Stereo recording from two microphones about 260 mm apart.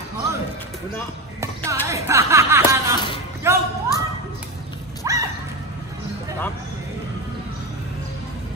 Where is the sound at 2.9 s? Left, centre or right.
Centre.